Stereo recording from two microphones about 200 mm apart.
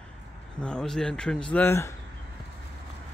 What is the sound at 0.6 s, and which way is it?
Speech, 5° left (ahead or behind).